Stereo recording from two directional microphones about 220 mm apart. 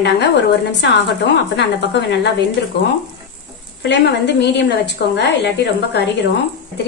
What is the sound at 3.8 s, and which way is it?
A woman's voice, 50° left (ahead or behind).